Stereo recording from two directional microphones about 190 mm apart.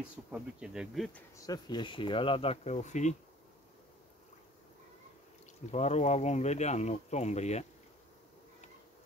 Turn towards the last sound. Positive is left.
turn(degrees=35)  # may be behind; listen again after turning